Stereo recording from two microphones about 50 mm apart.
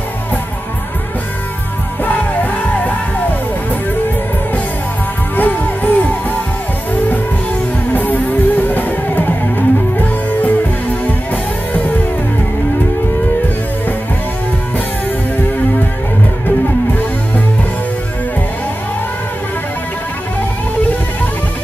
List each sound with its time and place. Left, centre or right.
2.0 s music: left
5.3 s music: left
7.9 s music: left